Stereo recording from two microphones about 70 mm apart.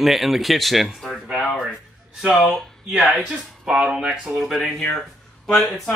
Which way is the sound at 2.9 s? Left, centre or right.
Centre.